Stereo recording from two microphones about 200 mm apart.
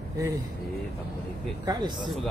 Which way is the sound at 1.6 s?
20° right (ahead or behind).